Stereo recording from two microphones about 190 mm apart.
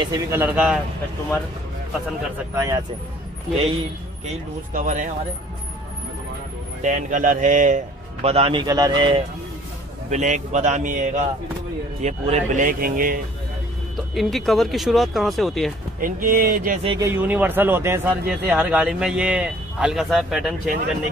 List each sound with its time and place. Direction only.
0.0 s speech: 15° right (ahead or behind)
2.5 s speech: 15° right (ahead or behind)
3.5 s a man's voice: 30° right (ahead or behind)
4.7 s speech: 45° right (ahead or behind)
6.8 s a man's voice: 40° right (ahead or behind); by 9.2 s 25° right (ahead or behind)
10.0 s a man's voice: 40° right (ahead or behind)
13.9 s speech: centre (ahead or behind)
16.0 s speech: 45° right (ahead or behind)
16.9 s speech: 10° right (ahead or behind)